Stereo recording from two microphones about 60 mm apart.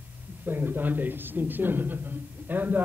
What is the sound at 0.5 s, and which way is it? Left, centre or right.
A man's voice, right.